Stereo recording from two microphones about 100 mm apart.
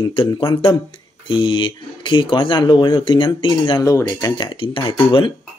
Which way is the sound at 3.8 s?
35° left (ahead or behind).